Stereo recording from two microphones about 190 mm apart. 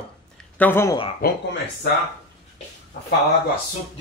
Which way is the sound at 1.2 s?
55° left (ahead or behind).